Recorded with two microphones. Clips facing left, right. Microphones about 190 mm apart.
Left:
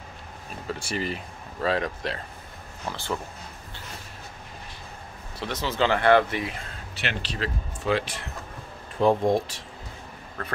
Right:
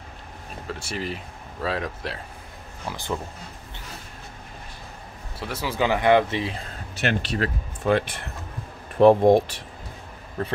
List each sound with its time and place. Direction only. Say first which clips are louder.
0.7 s speech: left 1 dB; centre (ahead or behind)
2.9 s speech: right 1 dB; 15° right (ahead or behind)
5.4 s speech: even; 10° right (ahead or behind)
7.0 s speech: right 6 dB; 50° right (ahead or behind)